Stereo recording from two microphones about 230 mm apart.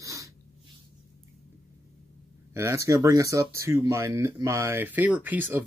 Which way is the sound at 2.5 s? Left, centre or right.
Centre.